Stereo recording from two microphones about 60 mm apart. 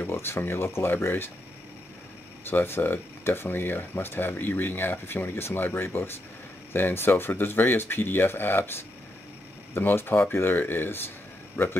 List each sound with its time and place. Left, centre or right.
0.0 s speech: left
2.4 s a man's voice: left